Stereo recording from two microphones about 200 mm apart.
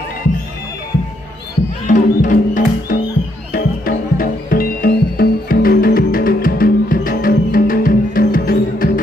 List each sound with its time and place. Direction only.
1.9 s music: 40° left (ahead or behind)